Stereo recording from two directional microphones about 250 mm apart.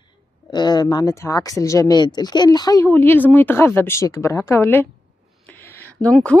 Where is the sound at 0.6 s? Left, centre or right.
Centre.